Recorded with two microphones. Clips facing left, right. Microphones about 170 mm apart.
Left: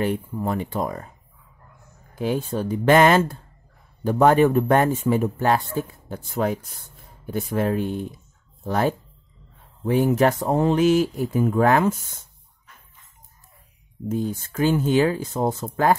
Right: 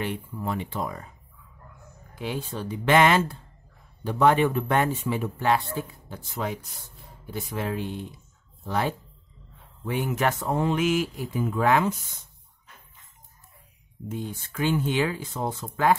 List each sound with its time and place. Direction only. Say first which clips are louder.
0.0 s speech: left 6 dB; 40° left (ahead or behind)
2.1 s speech: left 8 dB; 45° left (ahead or behind)
14.0 s speech: left 8 dB; 40° left (ahead or behind)